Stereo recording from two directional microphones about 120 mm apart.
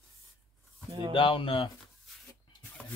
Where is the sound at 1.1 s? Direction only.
45° left (ahead or behind).